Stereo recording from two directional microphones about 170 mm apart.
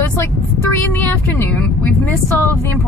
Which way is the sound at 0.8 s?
15° left (ahead or behind).